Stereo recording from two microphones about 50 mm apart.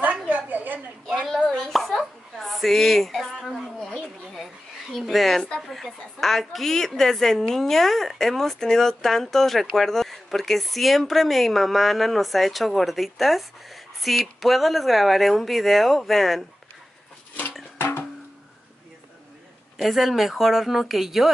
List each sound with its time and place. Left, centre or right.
0.5 s a sound: right
1.2 s chopping: centre
3.8 s a sound: centre
4.9 s a woman's voice: centre
17.7 s music: left
19.8 s a woman's voice: centre